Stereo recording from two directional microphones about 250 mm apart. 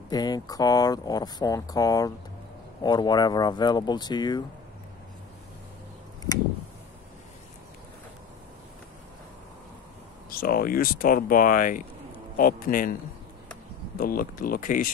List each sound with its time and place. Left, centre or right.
0.1 s speech: centre
10.3 s speech: left
13.9 s speech: left